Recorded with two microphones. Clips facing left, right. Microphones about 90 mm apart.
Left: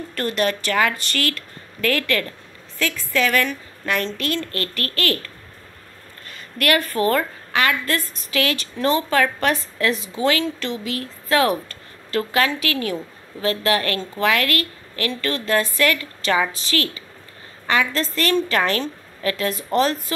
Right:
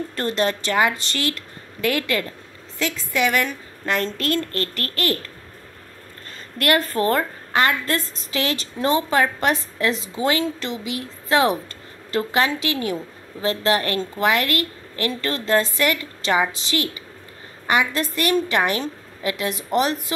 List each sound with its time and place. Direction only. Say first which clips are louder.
0.1 s a woman's voice: left 1 dB; 25° right (ahead or behind)
6.6 s a woman's voice: even; 25° right (ahead or behind)